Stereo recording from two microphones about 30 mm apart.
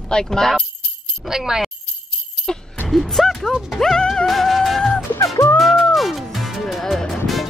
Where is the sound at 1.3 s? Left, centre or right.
Centre.